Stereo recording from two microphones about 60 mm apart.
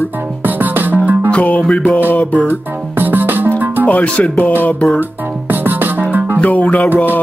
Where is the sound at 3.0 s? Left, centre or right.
Right.